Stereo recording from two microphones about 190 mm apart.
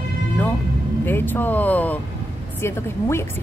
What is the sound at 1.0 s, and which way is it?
A woman's voice, 10° left (ahead or behind).